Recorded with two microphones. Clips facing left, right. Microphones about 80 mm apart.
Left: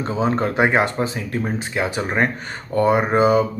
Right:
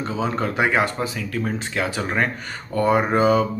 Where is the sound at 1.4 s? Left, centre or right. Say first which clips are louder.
Left 1 dB; centre.